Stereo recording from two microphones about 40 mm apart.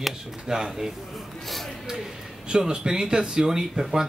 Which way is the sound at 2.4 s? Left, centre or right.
Centre.